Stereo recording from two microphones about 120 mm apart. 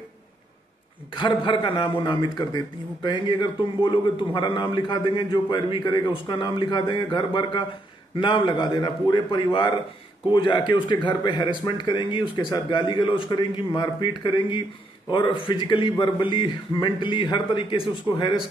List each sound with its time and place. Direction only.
1.1 s a man's voice: 45° left (ahead or behind)